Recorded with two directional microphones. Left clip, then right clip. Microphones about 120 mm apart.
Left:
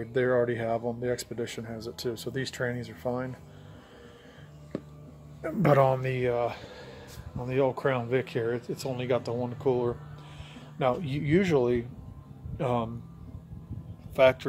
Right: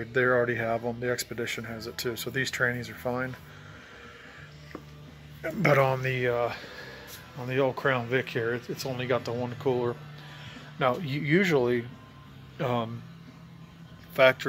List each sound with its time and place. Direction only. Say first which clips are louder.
0.0 s speech: right 1 dB; 15° left (ahead or behind)
5.8 s speech: left 1 dB; 30° left (ahead or behind)
6.1 s speech: right 1 dB; 15° left (ahead or behind)
14.1 s speech: right 1 dB; 10° left (ahead or behind)